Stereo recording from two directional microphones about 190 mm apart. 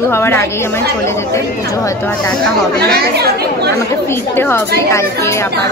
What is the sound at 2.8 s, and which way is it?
Speech, 55° right (ahead or behind).